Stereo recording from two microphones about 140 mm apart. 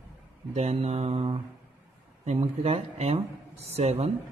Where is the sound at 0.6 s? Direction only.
45° right (ahead or behind).